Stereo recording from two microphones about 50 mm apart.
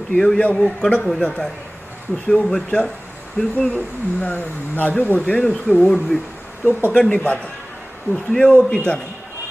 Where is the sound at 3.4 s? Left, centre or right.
Centre.